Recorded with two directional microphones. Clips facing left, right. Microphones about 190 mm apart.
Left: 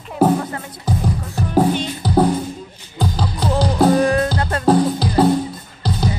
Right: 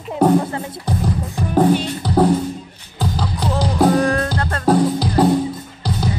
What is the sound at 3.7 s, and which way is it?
Music, 5° left (ahead or behind).